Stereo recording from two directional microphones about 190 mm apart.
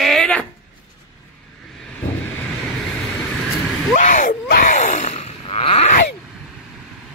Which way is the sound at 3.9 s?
45° left (ahead or behind).